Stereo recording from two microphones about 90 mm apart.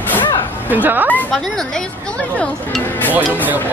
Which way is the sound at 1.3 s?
5° left (ahead or behind).